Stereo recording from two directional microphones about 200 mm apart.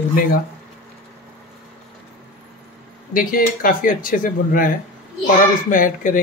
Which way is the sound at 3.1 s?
45° left (ahead or behind).